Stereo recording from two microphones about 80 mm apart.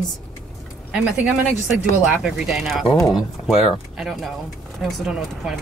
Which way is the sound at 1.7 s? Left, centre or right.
Centre.